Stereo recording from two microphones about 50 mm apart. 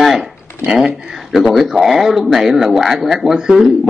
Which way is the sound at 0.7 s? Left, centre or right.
Centre.